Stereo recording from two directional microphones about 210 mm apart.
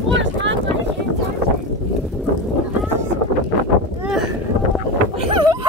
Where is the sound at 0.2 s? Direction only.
60° right (ahead or behind).